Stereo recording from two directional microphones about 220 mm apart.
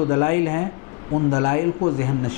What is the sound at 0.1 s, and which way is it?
Speech, 15° left (ahead or behind).